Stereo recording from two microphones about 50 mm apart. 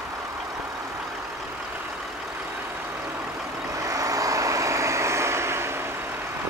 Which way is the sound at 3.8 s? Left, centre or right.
Right.